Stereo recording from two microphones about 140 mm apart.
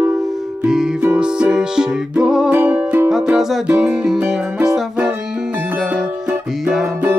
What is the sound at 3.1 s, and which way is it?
Music, 5° right (ahead or behind).